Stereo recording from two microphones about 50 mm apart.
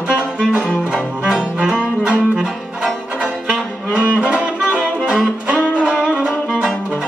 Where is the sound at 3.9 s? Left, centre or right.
Right.